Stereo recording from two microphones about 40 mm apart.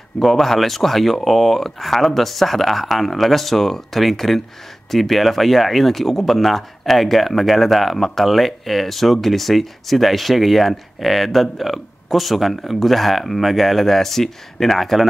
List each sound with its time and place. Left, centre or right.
0.2 s speech: centre